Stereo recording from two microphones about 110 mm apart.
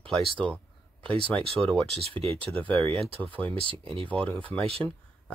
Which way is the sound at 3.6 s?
55° right (ahead or behind).